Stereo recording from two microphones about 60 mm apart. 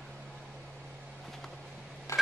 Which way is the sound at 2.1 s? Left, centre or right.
Left.